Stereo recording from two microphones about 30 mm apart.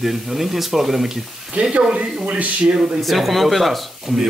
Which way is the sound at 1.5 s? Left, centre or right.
Right.